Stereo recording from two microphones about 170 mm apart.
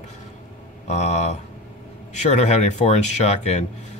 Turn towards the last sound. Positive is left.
turn(degrees=40)  # may be behind; listen again after turning